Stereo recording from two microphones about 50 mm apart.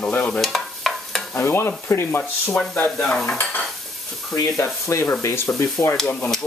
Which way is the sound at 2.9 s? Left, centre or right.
Centre.